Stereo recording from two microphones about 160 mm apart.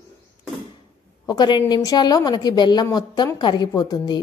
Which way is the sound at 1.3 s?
25° left (ahead or behind).